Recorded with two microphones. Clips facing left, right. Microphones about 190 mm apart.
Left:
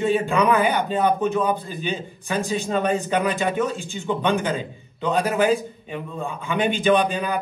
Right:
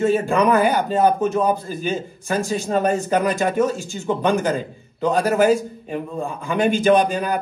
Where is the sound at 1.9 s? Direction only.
Centre (ahead or behind).